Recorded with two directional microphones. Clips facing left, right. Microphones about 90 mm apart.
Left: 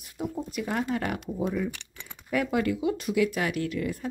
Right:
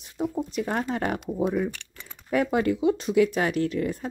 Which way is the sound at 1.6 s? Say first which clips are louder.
Right 2 dB; 10° left (ahead or behind).